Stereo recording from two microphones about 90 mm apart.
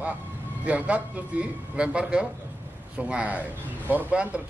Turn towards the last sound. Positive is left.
turn(degrees=-15)  # may be behind; listen again after turning